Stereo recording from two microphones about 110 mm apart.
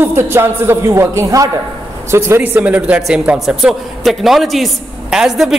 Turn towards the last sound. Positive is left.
turn(degrees=-5)  # may be behind; listen again after turning